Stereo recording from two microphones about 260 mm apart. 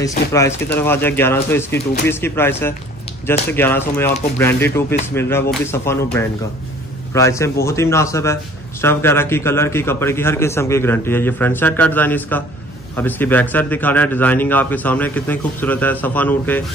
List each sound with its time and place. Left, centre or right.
0.3 s a man's voice: centre